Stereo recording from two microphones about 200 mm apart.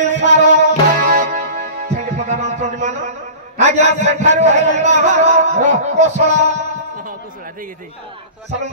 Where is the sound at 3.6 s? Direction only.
35° right (ahead or behind).